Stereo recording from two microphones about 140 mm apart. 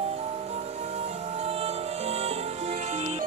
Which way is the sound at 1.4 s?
45° right (ahead or behind).